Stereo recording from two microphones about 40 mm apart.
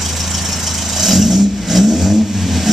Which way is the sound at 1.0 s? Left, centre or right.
Centre.